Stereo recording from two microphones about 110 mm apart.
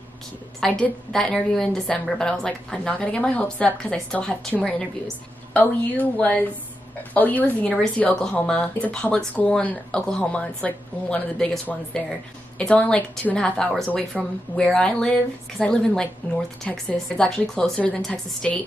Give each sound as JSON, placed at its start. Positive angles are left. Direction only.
{"t": 0.6, "sound": "a woman's voice", "side_deg": 5}
{"t": 12.5, "sound": "a woman's voice", "side_deg": 10}